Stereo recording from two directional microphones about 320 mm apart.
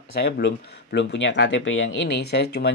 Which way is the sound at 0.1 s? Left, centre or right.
Left.